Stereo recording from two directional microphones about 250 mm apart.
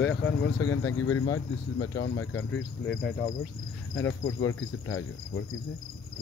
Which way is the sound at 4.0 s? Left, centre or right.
Left.